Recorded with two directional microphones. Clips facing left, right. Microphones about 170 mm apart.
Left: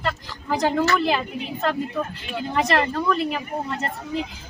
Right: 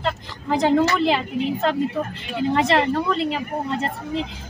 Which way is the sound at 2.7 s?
20° right (ahead or behind).